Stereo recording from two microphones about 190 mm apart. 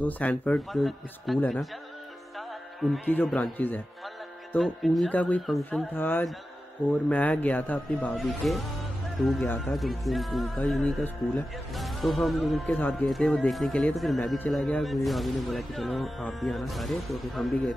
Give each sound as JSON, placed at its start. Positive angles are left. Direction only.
{"t": 0.0, "sound": "speech", "side_deg": 10}